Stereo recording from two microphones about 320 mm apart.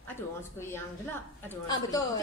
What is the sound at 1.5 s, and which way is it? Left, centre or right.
Speech, centre.